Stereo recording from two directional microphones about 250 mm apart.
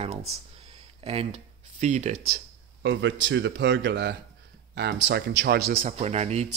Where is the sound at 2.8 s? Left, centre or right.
Right.